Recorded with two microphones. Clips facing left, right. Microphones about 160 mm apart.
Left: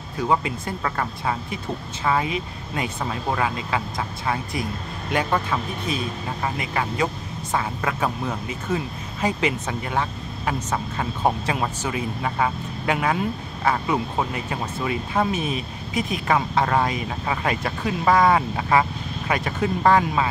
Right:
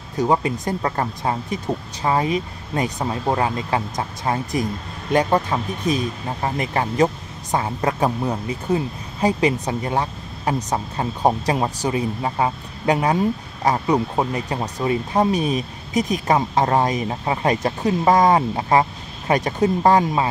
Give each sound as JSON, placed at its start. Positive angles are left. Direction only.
{"t": 0.2, "sound": "speech", "side_deg": -30}